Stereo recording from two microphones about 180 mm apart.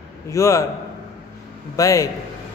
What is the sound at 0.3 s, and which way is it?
Speech, 15° left (ahead or behind).